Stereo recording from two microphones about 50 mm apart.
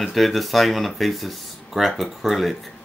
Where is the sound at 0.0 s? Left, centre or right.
Centre.